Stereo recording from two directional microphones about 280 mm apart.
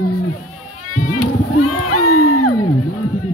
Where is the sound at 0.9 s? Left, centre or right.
Left.